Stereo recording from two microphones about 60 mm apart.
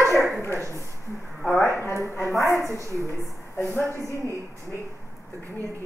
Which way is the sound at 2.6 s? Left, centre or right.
Right.